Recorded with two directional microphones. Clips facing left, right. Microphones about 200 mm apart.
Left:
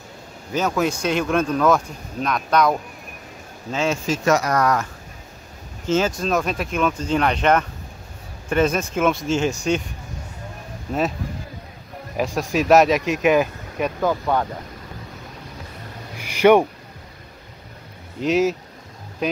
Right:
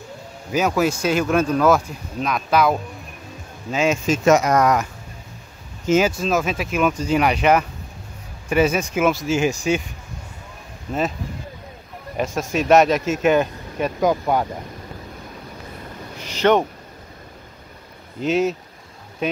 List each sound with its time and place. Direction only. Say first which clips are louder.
0.5 s speech: right 2 dB; 10° right (ahead or behind)
3.7 s speech: right 3 dB; 15° right (ahead or behind)
5.9 s speech: right 2 dB; 10° right (ahead or behind)
10.9 s speech: left 1 dB; centre (ahead or behind)
12.2 s speech: left 1 dB; centre (ahead or behind)
14.0 s speech: right 3 dB; 15° right (ahead or behind)
16.2 s a sound: left 3 dB; 10° left (ahead or behind)
18.2 s speech: left 1 dB; centre (ahead or behind)